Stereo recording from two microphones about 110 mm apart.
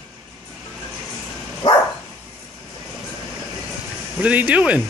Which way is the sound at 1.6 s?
40° left (ahead or behind).